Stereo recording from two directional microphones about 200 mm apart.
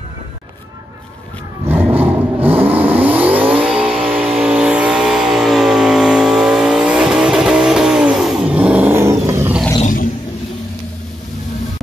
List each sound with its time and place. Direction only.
1.7 s vehicle: 10° right (ahead or behind)
9.8 s roar: 40° left (ahead or behind)